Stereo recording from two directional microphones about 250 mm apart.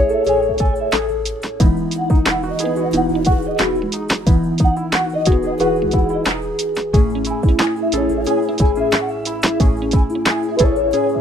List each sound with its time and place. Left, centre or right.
2.9 s music: centre
7.4 s music: centre